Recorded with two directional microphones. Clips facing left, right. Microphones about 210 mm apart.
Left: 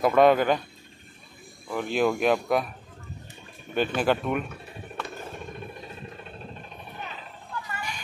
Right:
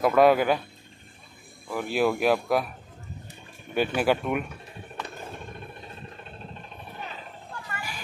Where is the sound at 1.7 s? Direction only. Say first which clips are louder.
Even; 10° right (ahead or behind).